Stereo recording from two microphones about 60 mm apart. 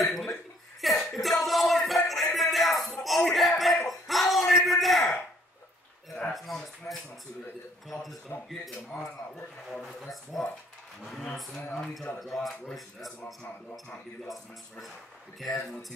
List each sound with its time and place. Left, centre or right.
0.0 s chuckle: centre
0.9 s music: centre
3.3 s a sound: centre
6.3 s a sound: centre
9.7 s speech: centre
13.2 s music: left
14.2 s speech: centre